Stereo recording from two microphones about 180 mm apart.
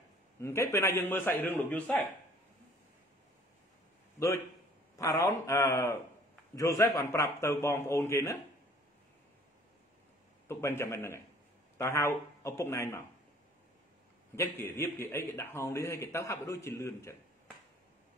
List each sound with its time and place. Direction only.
0.4 s a man's voice: 15° left (ahead or behind)
4.9 s a man's voice: 20° left (ahead or behind)
10.5 s a man's voice: 15° left (ahead or behind)
14.3 s a man's voice: 15° left (ahead or behind)